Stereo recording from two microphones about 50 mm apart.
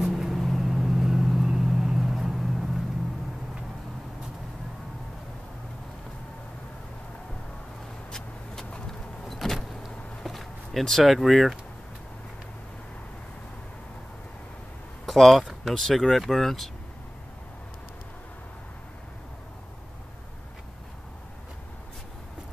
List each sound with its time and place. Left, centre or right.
0.0 s vehicle: centre
8.1 s vehicle: centre
15.0 s speech: centre